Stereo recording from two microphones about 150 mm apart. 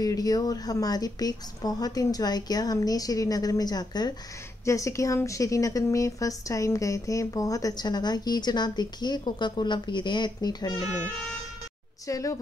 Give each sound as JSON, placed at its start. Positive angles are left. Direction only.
{"t": 0.0, "sound": "speech", "side_deg": 25}
{"t": 12.1, "sound": "speech", "side_deg": 20}